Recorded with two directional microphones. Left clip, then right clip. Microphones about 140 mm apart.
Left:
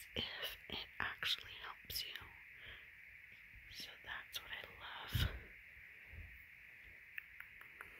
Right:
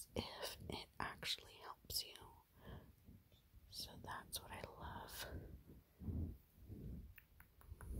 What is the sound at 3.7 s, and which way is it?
Whispering, 10° right (ahead or behind).